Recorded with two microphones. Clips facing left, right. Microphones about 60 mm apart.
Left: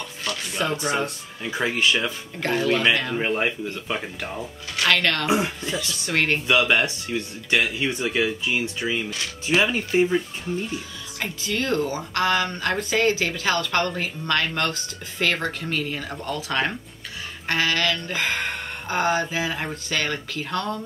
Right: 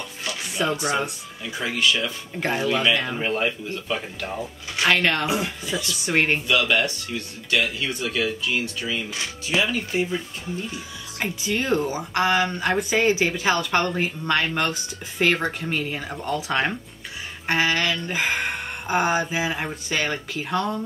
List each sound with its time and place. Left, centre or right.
0.2 s speech: centre
1.4 s speech: left
2.4 s speech: centre
3.4 s speech: centre
4.7 s speech: centre
6.4 s speech: left
9.1 s speech: centre
9.6 s speech: left
11.2 s speech: centre